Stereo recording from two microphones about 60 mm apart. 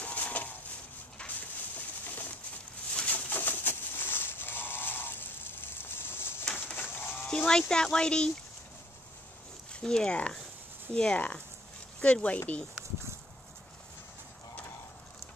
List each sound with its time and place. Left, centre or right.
0.0 s a sound: left
2.0 s pigeon: left
2.9 s sheep: left
5.8 s a sound: left
7.2 s speech: centre
9.7 s speech: centre